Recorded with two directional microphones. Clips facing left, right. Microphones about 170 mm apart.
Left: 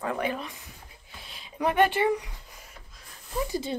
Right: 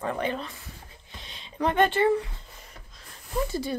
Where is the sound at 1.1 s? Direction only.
5° left (ahead or behind).